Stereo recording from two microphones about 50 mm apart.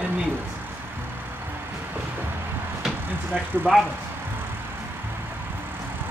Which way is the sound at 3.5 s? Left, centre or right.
Right.